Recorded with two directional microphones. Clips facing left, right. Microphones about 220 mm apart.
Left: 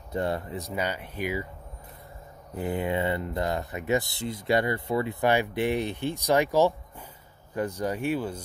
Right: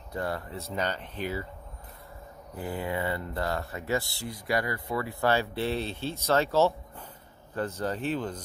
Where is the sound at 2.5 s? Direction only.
20° left (ahead or behind).